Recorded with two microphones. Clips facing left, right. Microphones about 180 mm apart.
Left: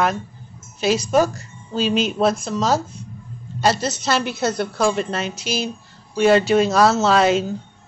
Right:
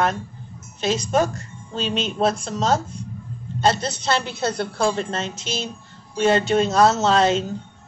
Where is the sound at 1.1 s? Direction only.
5° left (ahead or behind).